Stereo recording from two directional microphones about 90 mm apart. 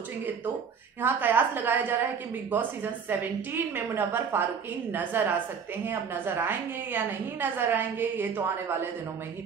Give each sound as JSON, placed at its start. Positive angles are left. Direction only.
{"t": 1.0, "sound": "a woman's voice", "side_deg": -20}